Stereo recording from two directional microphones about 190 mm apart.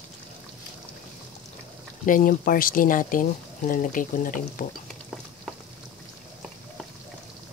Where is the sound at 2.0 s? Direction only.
45° left (ahead or behind).